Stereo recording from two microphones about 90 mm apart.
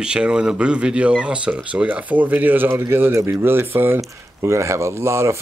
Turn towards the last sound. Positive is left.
turn(degrees=-30)  # may be behind; listen again after turning